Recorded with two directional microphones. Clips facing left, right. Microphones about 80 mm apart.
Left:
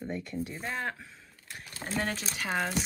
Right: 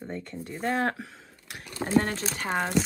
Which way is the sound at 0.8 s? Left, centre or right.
Right.